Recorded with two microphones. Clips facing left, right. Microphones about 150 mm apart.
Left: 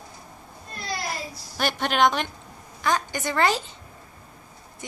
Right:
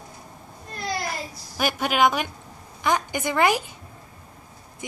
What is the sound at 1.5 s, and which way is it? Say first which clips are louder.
A woman's voice: right 1 dB; 10° right (ahead or behind).